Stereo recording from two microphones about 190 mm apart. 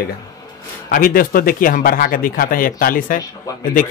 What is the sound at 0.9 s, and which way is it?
A man's voice, 50° left (ahead or behind).